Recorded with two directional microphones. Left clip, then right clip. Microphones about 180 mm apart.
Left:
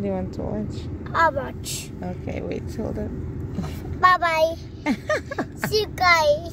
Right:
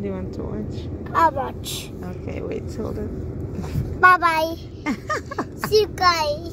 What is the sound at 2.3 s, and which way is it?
Speech, 25° left (ahead or behind).